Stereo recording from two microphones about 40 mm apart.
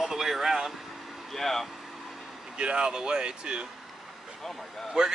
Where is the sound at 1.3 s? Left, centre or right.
Centre.